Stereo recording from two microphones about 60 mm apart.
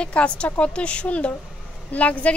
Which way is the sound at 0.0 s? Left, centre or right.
Centre.